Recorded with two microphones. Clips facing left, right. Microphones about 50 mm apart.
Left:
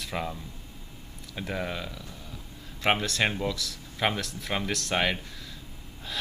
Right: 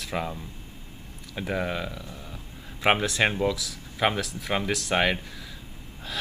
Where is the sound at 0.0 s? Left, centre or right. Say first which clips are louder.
Right 2 dB; centre.